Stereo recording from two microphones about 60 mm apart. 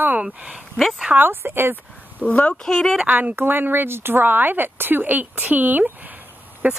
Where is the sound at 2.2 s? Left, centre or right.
Left.